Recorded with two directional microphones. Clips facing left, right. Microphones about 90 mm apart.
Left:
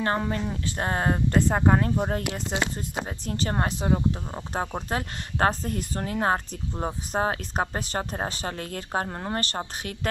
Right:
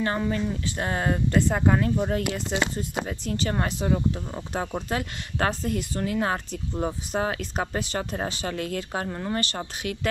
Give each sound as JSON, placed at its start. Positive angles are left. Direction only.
{"t": 0.0, "sound": "speech", "side_deg": 40}